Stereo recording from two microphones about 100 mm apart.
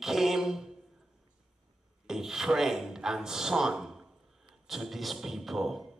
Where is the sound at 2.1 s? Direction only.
5° right (ahead or behind).